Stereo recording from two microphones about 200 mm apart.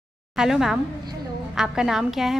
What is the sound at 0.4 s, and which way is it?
A woman's voice, centre (ahead or behind).